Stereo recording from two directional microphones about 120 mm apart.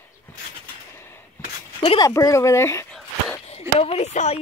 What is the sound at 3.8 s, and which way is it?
Speech, 60° left (ahead or behind).